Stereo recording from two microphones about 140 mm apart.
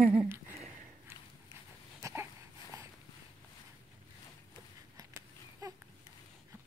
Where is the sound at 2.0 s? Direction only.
20° right (ahead or behind).